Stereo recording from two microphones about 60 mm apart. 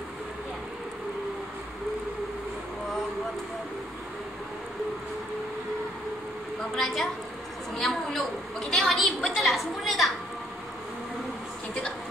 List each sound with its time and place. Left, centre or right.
6.8 s a woman's voice: centre